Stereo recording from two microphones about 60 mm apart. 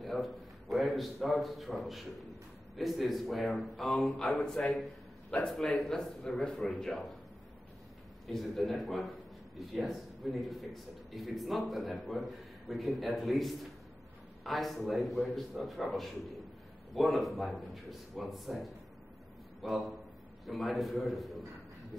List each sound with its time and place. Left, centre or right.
0.0 s a man's voice: centre
8.3 s a man's voice: centre